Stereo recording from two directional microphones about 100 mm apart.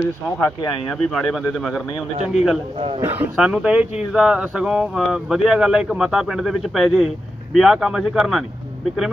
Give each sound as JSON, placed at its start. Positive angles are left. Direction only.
{"t": 0.7, "sound": "speech", "side_deg": 0}
{"t": 3.0, "sound": "speech", "side_deg": -20}